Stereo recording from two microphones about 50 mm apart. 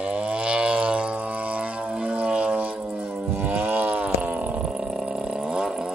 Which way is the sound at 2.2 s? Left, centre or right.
Right.